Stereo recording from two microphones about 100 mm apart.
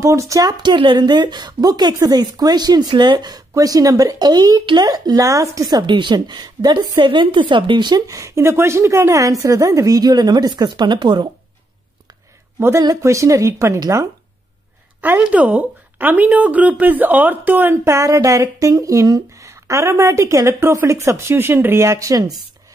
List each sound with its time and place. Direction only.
0.0 s speech: 30° right (ahead or behind); by 8.0 s 50° right (ahead or behind)
8.1 s a woman's voice: 30° right (ahead or behind); by 11.2 s 50° right (ahead or behind)
12.5 s a woman's voice: 25° right (ahead or behind)
15.0 s speech: 15° right (ahead or behind); by 22.2 s 30° right (ahead or behind)